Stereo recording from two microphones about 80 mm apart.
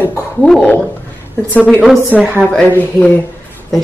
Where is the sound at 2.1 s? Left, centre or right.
Centre.